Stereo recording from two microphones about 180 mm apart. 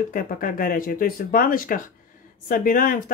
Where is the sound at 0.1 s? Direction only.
50° left (ahead or behind).